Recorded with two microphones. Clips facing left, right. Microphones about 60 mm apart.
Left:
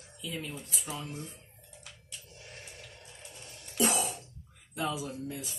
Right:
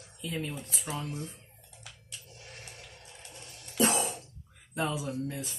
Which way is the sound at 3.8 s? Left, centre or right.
Right.